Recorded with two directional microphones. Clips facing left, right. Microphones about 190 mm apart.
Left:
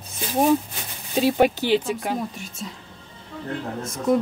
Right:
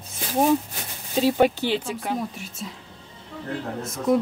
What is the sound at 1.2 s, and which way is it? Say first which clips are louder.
Speech: left 1 dB; 15° left (ahead or behind).